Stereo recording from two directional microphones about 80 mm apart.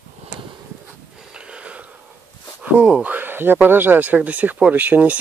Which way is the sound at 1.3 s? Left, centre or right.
Centre.